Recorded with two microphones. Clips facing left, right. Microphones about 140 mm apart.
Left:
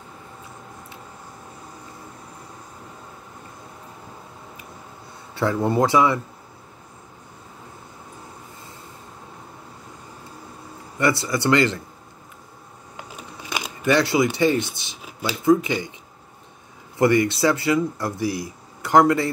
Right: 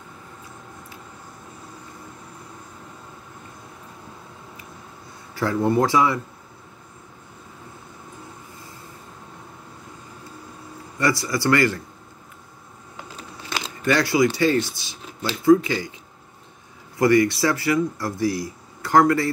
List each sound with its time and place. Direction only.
5.3 s speech: 20° left (ahead or behind)
11.0 s speech: 25° left (ahead or behind)
12.9 s a sound: 15° left (ahead or behind)
14.2 s speech: 20° left (ahead or behind)
15.0 s a sound: 10° left (ahead or behind)
15.4 s speech: 20° left (ahead or behind)
17.0 s speech: 20° left (ahead or behind)